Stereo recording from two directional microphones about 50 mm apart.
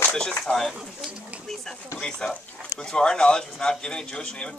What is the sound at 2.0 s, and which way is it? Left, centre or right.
A man's voice, centre.